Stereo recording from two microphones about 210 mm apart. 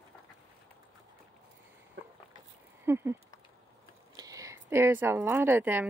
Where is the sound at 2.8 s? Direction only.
10° right (ahead or behind).